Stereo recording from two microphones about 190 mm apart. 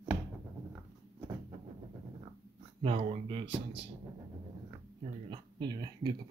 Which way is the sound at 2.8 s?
30° right (ahead or behind).